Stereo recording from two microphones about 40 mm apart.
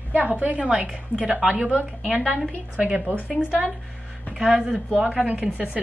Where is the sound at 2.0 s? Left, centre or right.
Centre.